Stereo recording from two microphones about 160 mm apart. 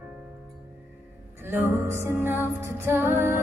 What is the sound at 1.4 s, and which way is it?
Music, 15° right (ahead or behind).